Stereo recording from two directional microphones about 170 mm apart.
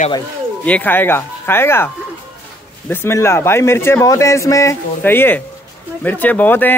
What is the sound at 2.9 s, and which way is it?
A man's voice, 15° left (ahead or behind).